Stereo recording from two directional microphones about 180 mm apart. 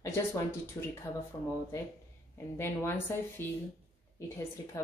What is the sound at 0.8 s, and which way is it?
Speech, 20° left (ahead or behind).